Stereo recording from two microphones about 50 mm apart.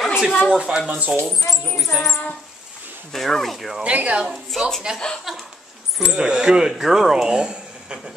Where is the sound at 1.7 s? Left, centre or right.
Centre.